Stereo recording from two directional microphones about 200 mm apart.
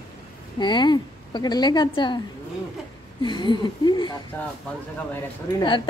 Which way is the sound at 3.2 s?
25° left (ahead or behind).